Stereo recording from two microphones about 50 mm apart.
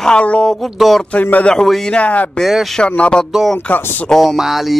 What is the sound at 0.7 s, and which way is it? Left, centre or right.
Speech, centre.